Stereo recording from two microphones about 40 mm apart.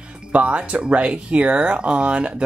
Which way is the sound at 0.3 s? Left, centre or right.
Right.